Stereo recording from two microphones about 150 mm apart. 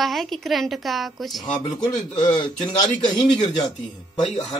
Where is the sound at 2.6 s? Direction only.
25° left (ahead or behind).